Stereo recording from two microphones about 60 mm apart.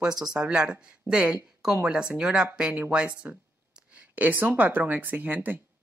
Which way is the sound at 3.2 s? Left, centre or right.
Right.